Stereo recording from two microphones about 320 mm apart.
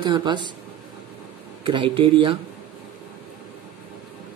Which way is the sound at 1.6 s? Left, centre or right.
Centre.